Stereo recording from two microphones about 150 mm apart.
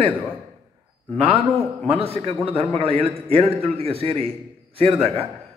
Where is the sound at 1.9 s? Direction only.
40° right (ahead or behind).